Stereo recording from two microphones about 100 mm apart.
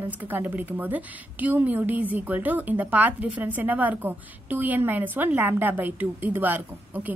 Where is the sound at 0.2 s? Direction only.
15° right (ahead or behind).